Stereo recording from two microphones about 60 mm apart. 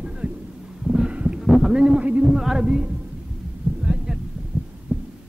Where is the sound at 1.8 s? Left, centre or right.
Centre.